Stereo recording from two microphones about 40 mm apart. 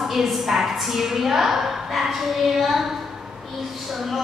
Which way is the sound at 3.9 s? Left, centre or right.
Centre.